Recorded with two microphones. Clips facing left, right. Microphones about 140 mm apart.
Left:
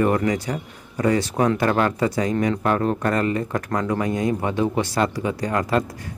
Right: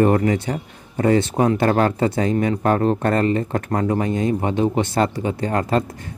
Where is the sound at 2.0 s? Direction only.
25° right (ahead or behind).